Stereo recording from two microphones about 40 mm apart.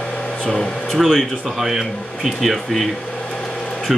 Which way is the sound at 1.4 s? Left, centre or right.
Centre.